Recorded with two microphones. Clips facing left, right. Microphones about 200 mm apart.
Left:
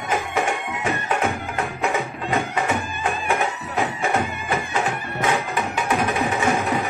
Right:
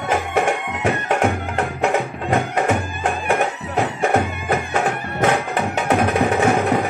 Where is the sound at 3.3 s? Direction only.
55° right (ahead or behind).